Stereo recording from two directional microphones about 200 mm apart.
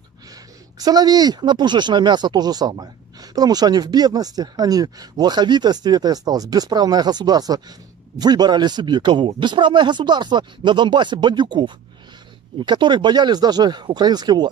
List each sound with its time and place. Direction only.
0.3 s speech: 20° right (ahead or behind)